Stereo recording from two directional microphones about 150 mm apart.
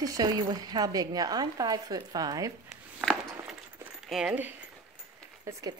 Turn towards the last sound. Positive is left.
turn(degrees=-25)  # may be behind; listen again after turning